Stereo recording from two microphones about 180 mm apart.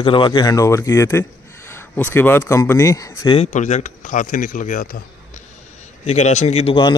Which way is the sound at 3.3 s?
40° left (ahead or behind).